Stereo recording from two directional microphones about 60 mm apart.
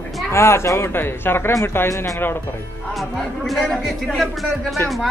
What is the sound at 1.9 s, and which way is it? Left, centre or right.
Speech, left.